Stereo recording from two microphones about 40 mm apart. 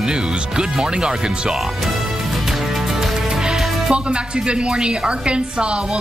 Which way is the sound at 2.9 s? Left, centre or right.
Centre.